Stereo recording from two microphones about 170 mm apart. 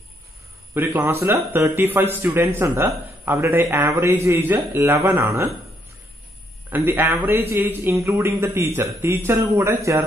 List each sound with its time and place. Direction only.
0.7 s a man's voice: 15° right (ahead or behind)
6.7 s a man's voice: 10° right (ahead or behind)